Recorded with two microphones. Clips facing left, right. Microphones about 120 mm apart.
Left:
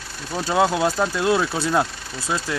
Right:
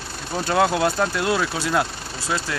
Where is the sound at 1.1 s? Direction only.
25° left (ahead or behind).